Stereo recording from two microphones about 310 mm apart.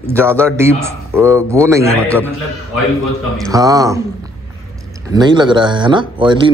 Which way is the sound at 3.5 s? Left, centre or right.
Centre.